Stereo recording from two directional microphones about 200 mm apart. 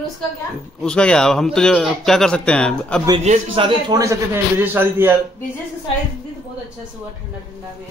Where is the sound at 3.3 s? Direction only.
25° right (ahead or behind); by 5.1 s 10° right (ahead or behind).